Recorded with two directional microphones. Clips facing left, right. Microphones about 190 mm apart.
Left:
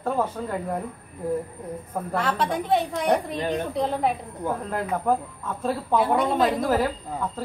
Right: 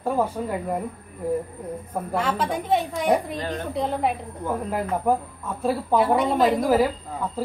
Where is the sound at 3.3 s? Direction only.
15° left (ahead or behind).